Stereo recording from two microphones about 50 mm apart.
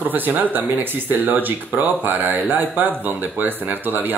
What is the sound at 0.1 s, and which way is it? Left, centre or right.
Speech, right.